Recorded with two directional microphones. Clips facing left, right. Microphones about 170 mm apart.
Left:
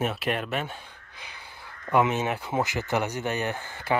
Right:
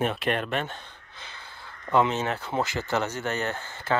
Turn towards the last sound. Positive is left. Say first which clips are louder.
# even
turn(degrees=15)  # may be behind; listen again after turning